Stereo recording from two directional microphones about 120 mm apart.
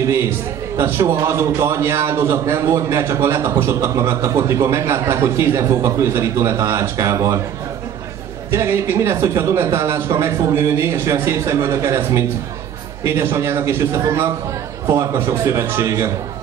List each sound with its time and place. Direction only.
0.0 s a man's voice: 25° right (ahead or behind)
8.5 s a man's voice: 20° right (ahead or behind)